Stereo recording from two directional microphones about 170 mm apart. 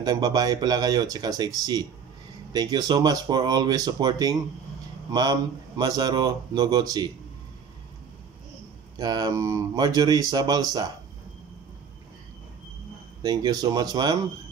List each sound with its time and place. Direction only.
0.0 s speech: 20° right (ahead or behind)
8.9 s speech: 25° right (ahead or behind)
13.2 s speech: 25° right (ahead or behind)